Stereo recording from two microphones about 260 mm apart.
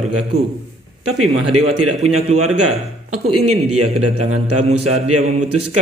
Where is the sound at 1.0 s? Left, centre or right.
Right.